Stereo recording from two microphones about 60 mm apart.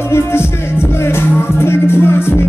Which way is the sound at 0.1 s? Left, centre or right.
Left.